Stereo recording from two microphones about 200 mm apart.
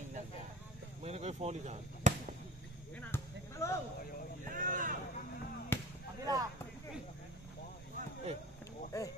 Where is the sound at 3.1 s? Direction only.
15° left (ahead or behind).